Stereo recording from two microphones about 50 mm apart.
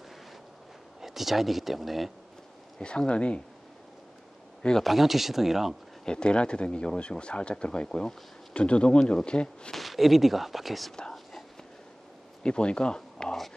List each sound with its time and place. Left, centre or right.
1.0 s speech: centre
2.8 s speech: centre
4.8 s speech: centre
6.0 s speech: centre
9.7 s speech: centre
12.4 s speech: centre